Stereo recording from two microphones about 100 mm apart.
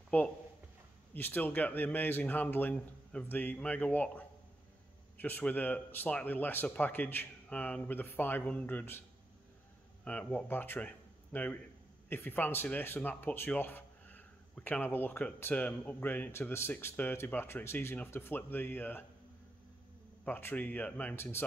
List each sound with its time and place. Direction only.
0.1 s speech: 15° left (ahead or behind)
10.0 s speech: 15° left (ahead or behind)
20.2 s speech: 20° left (ahead or behind)